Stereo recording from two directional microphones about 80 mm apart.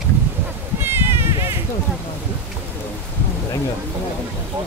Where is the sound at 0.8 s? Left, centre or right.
Right.